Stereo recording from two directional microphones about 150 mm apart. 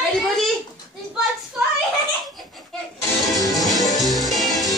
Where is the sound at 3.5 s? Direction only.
Centre (ahead or behind).